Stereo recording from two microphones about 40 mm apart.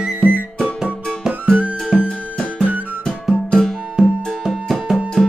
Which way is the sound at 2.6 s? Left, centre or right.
Right.